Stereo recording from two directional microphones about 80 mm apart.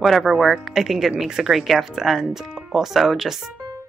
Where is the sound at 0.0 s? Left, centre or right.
Centre.